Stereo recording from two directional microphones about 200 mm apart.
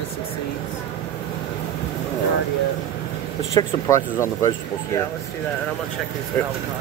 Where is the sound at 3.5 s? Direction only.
15° left (ahead or behind).